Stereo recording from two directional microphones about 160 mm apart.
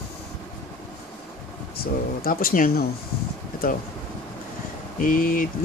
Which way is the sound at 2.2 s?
60° left (ahead or behind).